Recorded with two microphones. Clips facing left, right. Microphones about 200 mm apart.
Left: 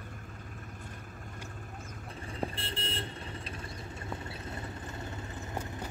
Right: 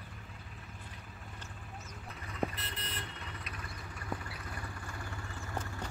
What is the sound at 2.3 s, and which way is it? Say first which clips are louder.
Vehicle: even; 30° left (ahead or behind).